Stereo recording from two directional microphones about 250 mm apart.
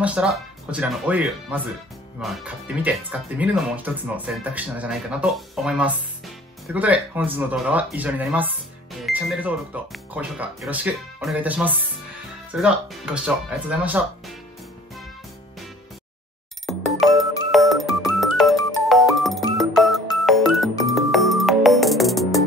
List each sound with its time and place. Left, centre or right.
0.0 s speech: centre
17.0 s music: centre